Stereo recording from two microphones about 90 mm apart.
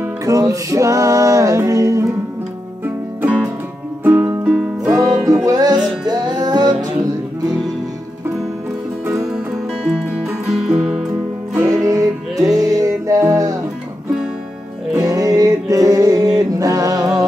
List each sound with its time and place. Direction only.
0.2 s music: 40° right (ahead or behind)
2.8 s music: 20° right (ahead or behind)
4.8 s music: 40° right (ahead or behind)
10.5 s music: 5° right (ahead or behind)
11.5 s music: 35° right (ahead or behind)
15.0 s music: 40° right (ahead or behind)